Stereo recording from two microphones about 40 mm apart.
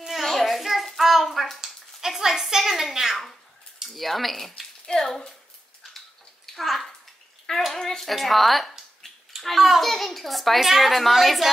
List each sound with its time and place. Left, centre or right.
0.2 s a sound: centre
0.6 s hands: centre
1.6 s a sound: centre
3.9 s a child's voice: centre
6.4 s bathtub: centre
7.7 s a sound: centre
8.0 s a child's voice: centre
9.0 s bathtub: centre
9.4 s a child's voice: centre